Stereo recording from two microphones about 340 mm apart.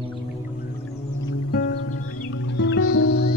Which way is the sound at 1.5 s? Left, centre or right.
Left.